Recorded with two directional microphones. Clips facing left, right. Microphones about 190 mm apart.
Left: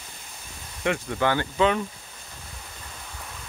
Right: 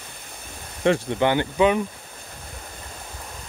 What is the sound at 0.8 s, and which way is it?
Speech, 30° right (ahead or behind).